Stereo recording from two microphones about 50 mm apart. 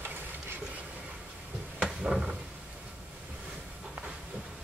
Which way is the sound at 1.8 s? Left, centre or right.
Centre.